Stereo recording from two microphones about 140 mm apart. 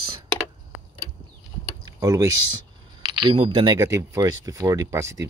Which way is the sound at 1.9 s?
25° right (ahead or behind).